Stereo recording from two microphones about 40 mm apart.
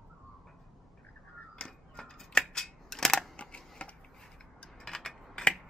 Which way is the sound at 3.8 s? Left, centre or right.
Left.